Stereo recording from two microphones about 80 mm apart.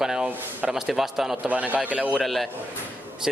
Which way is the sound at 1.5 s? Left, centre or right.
Centre.